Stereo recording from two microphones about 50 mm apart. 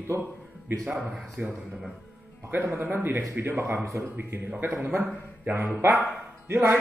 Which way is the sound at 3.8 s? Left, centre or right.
Right.